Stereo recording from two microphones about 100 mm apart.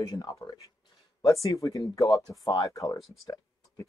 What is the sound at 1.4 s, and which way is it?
Speech, 35° left (ahead or behind).